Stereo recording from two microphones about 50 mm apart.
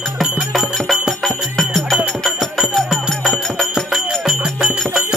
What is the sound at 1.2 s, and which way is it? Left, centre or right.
Music, centre.